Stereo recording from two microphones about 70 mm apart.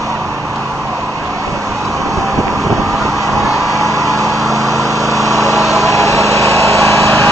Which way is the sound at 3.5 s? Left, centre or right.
Right.